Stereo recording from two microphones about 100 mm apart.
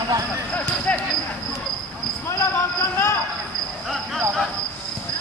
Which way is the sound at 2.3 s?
30° left (ahead or behind).